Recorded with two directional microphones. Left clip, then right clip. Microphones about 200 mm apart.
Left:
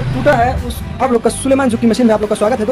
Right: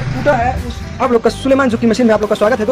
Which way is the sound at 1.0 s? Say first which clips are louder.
Right 1 dB; 5° left (ahead or behind).